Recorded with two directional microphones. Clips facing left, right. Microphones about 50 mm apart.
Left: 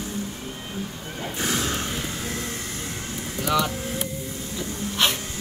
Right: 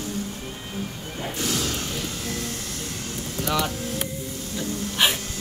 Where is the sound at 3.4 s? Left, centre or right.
Centre.